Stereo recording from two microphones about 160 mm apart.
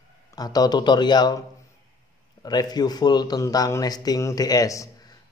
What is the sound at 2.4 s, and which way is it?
Speech, 25° left (ahead or behind).